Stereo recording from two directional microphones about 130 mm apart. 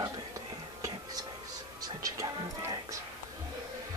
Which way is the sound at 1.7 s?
25° right (ahead or behind).